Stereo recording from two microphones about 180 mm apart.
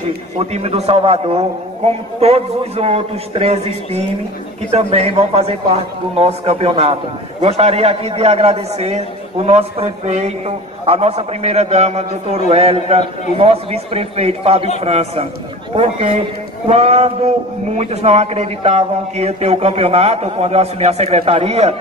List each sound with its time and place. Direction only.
0.4 s a man's voice: 35° right (ahead or behind)